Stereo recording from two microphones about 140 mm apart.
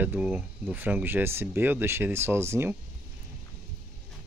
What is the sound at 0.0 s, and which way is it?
Speech, 10° right (ahead or behind).